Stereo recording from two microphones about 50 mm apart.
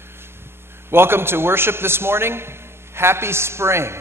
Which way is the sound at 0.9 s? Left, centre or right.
Right.